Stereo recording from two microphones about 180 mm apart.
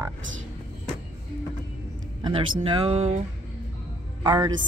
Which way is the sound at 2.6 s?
30° right (ahead or behind).